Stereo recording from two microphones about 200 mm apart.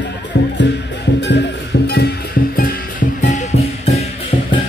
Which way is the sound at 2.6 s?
40° left (ahead or behind).